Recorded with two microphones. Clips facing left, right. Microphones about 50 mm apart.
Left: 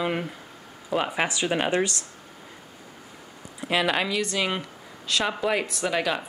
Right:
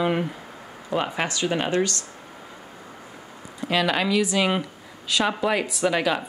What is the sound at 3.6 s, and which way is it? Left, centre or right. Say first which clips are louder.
Speech: right 2 dB; centre.